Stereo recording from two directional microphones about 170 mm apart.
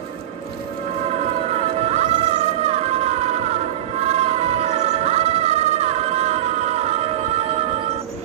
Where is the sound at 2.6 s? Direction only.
40° right (ahead or behind).